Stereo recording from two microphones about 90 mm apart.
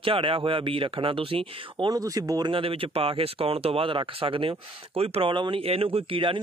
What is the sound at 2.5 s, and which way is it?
Speech, 90° right.